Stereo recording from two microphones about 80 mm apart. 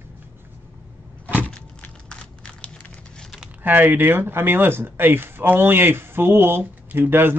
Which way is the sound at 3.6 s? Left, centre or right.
Right.